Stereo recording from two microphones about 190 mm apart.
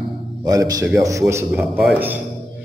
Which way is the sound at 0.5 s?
20° right (ahead or behind).